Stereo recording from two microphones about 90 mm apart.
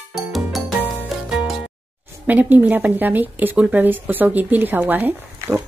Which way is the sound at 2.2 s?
20° right (ahead or behind).